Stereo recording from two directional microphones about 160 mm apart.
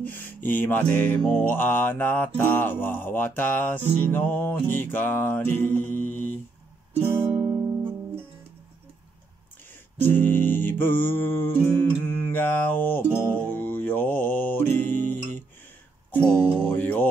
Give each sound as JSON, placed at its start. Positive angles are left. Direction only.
{"t": 0.0, "sound": "music", "side_deg": 10}
{"t": 7.0, "sound": "music", "side_deg": -20}
{"t": 9.9, "sound": "music", "side_deg": 10}
{"t": 16.6, "sound": "music", "side_deg": 10}